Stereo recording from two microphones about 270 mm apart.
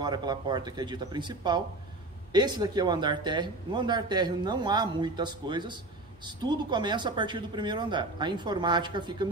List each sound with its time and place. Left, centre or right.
0.0 s speech: centre